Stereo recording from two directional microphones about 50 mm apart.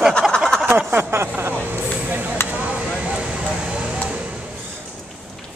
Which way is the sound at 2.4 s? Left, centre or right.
Left.